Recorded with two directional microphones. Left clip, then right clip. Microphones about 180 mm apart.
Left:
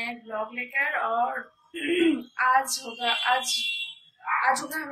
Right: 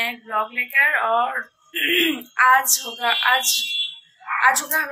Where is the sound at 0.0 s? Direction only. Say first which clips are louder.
Right 8 dB; centre (ahead or behind).